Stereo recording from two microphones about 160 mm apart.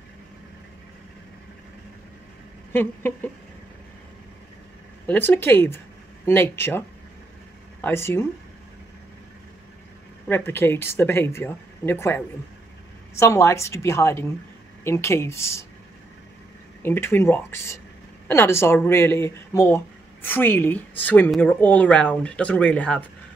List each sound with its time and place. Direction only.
2.7 s a woman's voice: 15° left (ahead or behind)
5.0 s a woman's voice: 10° left (ahead or behind)
7.8 s a woman's voice: 15° left (ahead or behind)
10.2 s a woman's voice: 15° left (ahead or behind)
13.2 s a woman's voice: 15° left (ahead or behind)
16.8 s a woman's voice: 15° left (ahead or behind)